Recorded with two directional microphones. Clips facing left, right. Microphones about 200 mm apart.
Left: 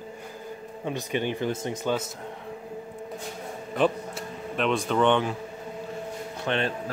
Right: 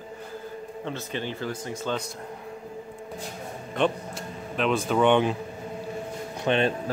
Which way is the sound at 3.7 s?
5° left (ahead or behind).